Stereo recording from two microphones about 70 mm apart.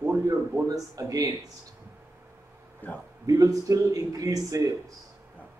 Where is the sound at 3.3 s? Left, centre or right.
Right.